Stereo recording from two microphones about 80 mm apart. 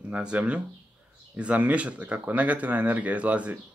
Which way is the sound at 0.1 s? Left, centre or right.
Centre.